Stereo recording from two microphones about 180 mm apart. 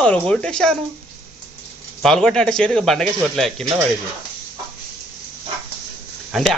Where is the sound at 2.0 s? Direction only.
5° left (ahead or behind).